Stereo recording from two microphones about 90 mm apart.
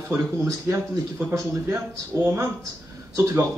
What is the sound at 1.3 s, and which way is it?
Speech, 35° right (ahead or behind).